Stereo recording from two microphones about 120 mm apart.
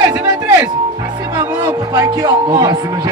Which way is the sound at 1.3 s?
30° right (ahead or behind).